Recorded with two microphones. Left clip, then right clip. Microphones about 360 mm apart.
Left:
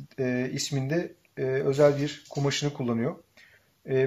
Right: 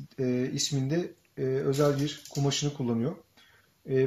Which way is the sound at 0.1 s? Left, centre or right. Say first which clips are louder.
Left 1 dB; left.